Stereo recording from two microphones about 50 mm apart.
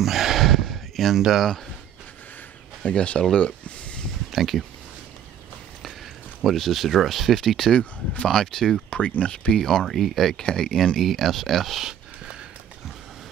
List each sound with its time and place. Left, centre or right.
0.0 s a sound: centre
1.2 s speech: centre
2.8 s speech: left
3.3 s a sound: left
4.3 s speech: centre
6.4 s speech: centre
7.7 s speech: left
8.3 s speech: centre
8.9 s speech: left
9.6 s speech: centre